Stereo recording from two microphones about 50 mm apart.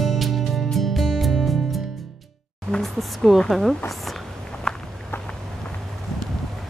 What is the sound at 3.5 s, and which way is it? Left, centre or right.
Speech, centre.